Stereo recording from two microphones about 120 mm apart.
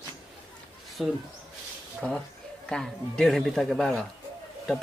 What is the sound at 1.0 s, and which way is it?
Speech, centre (ahead or behind).